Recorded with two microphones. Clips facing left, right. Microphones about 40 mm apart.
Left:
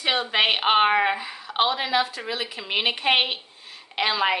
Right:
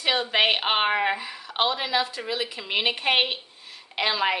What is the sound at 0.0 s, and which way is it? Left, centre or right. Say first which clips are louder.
Speech: even; centre.